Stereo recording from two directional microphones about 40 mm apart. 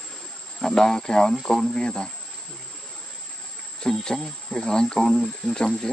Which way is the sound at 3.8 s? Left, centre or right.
Centre.